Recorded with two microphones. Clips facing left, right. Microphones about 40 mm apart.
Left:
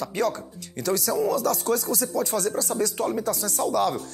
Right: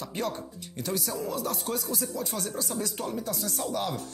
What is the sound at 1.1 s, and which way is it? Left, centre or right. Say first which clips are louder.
Music: left 8 dB; left.